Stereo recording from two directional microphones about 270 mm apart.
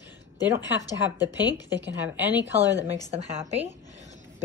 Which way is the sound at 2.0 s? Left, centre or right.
Centre.